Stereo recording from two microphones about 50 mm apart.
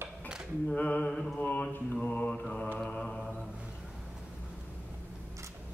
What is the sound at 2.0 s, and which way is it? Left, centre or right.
Mantra, left.